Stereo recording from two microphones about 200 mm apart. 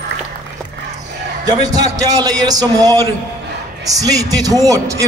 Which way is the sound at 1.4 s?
20° right (ahead or behind).